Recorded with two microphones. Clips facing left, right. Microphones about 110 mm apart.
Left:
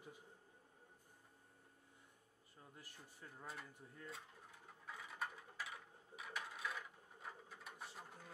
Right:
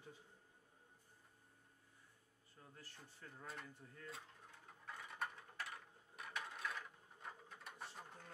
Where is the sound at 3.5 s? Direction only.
5° left (ahead or behind).